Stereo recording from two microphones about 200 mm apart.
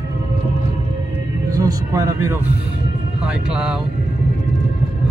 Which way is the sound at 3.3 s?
5° right (ahead or behind).